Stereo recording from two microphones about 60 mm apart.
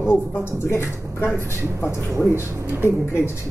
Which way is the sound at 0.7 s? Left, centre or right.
Left.